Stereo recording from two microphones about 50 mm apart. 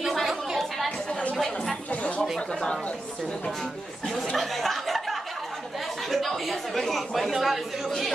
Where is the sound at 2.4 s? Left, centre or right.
Centre.